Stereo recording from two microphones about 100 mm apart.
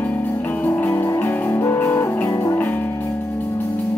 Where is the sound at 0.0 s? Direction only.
15° left (ahead or behind); by 2.6 s 30° left (ahead or behind).